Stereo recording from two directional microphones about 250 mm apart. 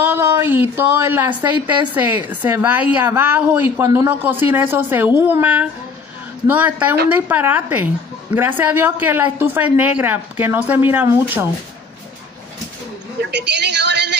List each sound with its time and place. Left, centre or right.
0.0 s a woman's voice: centre
13.2 s a woman's voice: right